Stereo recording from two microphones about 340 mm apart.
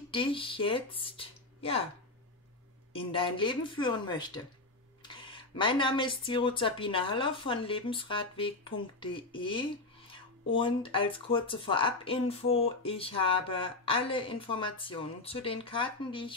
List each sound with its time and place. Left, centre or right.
0.1 s speech: centre
2.9 s a woman's voice: centre